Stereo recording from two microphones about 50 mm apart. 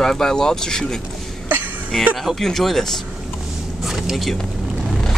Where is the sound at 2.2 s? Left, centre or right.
Centre.